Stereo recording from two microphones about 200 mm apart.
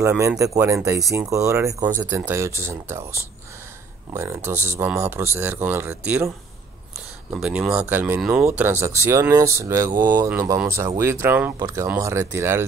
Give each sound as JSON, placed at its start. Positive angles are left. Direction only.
{"t": 0.0, "sound": "speech", "side_deg": -15}
{"t": 7.3, "sound": "speech", "side_deg": -5}